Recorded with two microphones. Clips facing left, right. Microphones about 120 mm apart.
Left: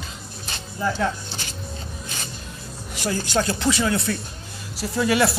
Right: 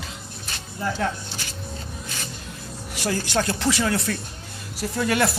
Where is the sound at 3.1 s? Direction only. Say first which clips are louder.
Left 1 dB; 65° right (ahead or behind).